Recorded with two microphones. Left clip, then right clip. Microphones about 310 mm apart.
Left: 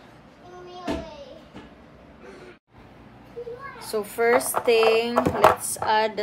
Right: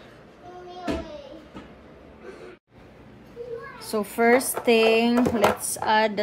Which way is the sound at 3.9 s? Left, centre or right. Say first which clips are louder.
Right 1 dB; centre.